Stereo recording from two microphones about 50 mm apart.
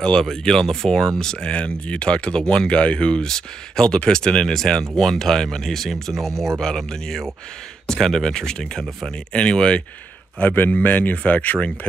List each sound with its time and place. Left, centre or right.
0.0 s speech: centre
6.3 s speech: right
6.6 s speech: centre
10.4 s speech: left